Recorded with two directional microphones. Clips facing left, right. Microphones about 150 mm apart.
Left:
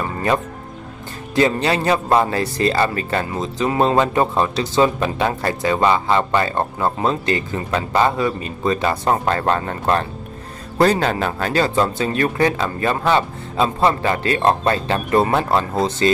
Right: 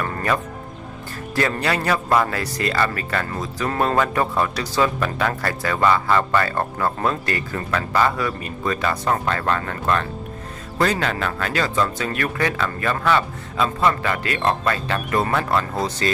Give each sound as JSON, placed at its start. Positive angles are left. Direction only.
{"t": 0.0, "sound": "speech", "side_deg": 25}